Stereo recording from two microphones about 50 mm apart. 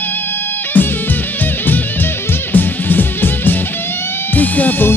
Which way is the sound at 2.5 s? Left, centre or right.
Left.